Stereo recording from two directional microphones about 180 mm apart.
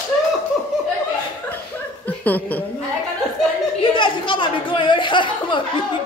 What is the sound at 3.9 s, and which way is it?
Speech, 25° left (ahead or behind).